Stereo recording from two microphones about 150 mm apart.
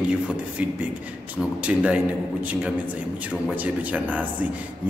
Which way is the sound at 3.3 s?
10° right (ahead or behind).